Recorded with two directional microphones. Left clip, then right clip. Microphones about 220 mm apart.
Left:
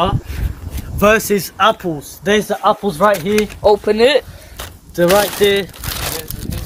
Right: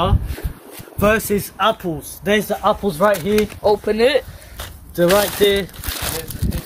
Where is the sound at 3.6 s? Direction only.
15° left (ahead or behind).